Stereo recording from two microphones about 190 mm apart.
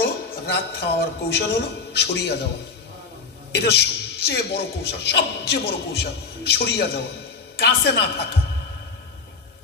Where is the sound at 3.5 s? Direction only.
60° left (ahead or behind).